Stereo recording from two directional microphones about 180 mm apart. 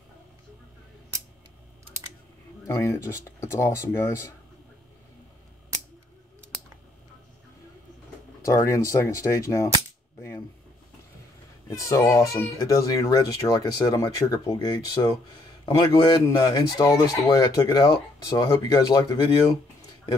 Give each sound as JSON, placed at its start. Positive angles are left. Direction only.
{"t": 2.6, "sound": "speech", "side_deg": 15}
{"t": 8.5, "sound": "speech", "side_deg": 15}
{"t": 11.9, "sound": "speech", "side_deg": 15}